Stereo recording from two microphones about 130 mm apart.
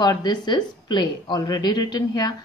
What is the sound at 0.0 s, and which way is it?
Speech, 35° left (ahead or behind).